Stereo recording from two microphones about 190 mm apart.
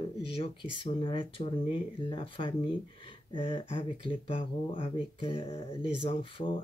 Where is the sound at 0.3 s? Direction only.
25° left (ahead or behind).